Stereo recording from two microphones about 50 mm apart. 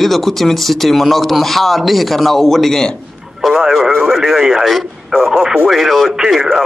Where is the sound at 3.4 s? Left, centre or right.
Centre.